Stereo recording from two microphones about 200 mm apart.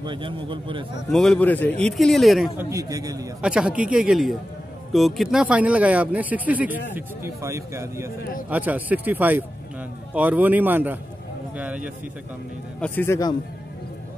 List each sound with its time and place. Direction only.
0.0 s a man's voice: 25° right (ahead or behind)
1.1 s a man's voice: 5° left (ahead or behind)
2.6 s speech: 15° right (ahead or behind)
3.3 s a man's voice: 5° right (ahead or behind)
12.8 s a man's voice: 10° left (ahead or behind)